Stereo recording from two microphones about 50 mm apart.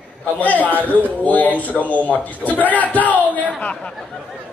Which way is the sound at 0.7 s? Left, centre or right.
Right.